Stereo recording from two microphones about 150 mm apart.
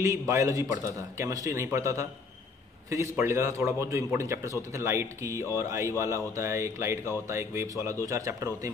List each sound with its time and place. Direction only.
0.0 s speech: 20° right (ahead or behind)
3.2 s speech: 20° right (ahead or behind)